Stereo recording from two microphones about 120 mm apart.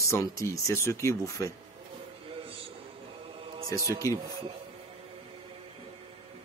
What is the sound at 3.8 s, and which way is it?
Speech, 25° right (ahead or behind).